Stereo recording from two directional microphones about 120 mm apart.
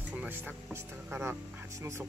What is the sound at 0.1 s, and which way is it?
Music, 10° right (ahead or behind).